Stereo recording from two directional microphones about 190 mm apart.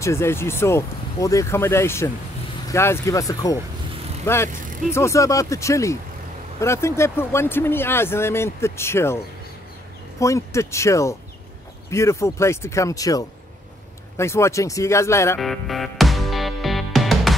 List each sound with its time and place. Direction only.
0.0 s speech: 15° left (ahead or behind)
15.4 s music: centre (ahead or behind)